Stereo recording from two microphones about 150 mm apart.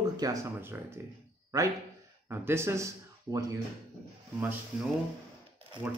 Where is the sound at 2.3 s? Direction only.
15° right (ahead or behind).